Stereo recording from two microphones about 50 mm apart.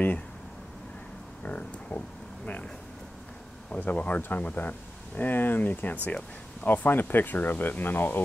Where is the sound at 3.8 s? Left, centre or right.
Left.